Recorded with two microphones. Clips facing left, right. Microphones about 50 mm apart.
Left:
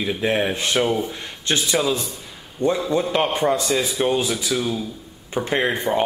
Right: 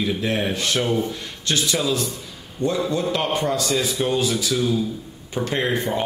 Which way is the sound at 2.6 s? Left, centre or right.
Left.